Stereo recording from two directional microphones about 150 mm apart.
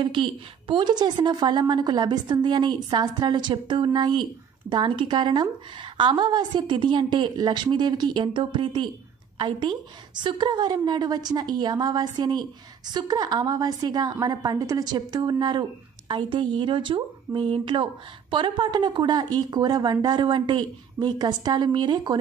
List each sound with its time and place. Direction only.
0.0 s a woman's voice: 35° right (ahead or behind)